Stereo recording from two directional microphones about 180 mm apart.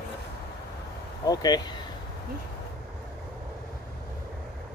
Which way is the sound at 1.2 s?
20° left (ahead or behind).